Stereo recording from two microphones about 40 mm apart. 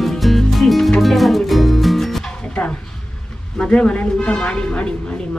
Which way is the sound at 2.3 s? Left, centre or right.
Left.